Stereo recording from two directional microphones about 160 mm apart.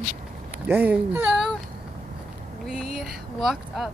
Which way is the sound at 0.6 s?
10° right (ahead or behind).